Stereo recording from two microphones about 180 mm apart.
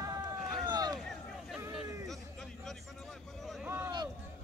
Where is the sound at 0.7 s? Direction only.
20° right (ahead or behind).